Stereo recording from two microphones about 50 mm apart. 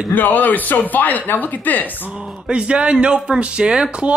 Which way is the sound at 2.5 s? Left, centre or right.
Right.